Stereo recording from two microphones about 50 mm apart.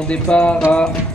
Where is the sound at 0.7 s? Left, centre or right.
Centre.